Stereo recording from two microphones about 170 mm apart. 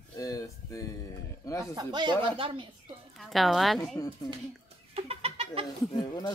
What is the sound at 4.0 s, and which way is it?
Speech, 20° left (ahead or behind).